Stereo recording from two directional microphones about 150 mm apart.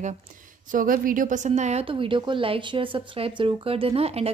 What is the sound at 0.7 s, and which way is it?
A woman's voice, 65° right (ahead or behind).